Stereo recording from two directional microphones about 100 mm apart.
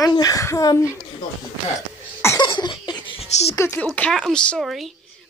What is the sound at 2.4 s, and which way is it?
Cough, 50° left (ahead or behind).